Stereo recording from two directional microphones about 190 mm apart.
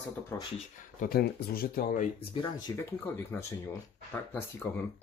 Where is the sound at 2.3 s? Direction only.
20° left (ahead or behind).